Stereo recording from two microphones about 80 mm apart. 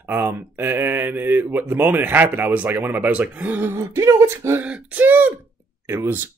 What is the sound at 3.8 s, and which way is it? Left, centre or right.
Speech, right.